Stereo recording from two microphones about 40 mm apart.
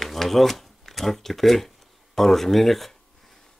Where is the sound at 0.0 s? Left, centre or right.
Centre.